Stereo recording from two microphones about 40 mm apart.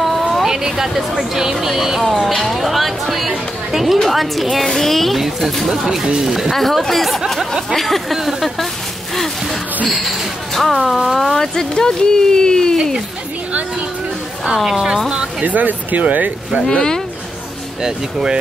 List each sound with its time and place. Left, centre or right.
0.0 s vehicle: centre
0.7 s speech: centre
6.1 s speech: centre
6.5 s speech: centre
9.8 s speech: centre
14.6 s speech: centre
15.4 s speech: right
16.6 s speech: centre
17.8 s speech: centre